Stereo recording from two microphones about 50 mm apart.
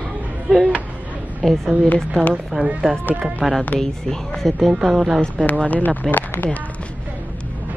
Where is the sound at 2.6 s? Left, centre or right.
Right.